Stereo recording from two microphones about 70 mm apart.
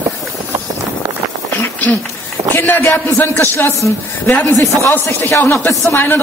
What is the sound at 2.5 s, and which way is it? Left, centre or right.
Speech, left.